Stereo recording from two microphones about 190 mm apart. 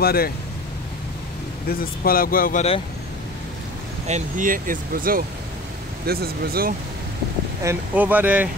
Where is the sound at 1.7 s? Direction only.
50° left (ahead or behind).